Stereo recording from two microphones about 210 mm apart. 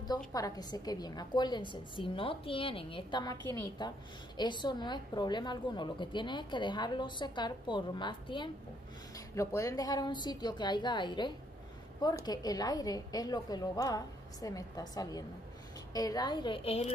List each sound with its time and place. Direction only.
0.3 s a woman's voice: 15° left (ahead or behind)